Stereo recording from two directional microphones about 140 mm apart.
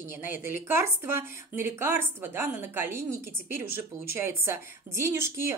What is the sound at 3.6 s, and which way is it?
Speech, 90° left.